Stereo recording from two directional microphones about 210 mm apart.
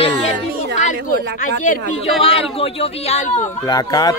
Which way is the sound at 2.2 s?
25° left (ahead or behind).